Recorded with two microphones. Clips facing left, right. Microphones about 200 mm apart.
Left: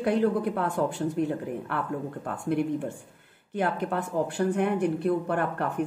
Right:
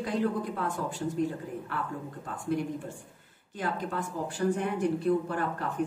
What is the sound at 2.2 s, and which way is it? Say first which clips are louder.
Speech: left 4 dB; 60° left (ahead or behind).